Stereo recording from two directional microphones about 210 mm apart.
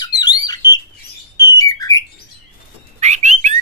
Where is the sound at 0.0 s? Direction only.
20° left (ahead or behind).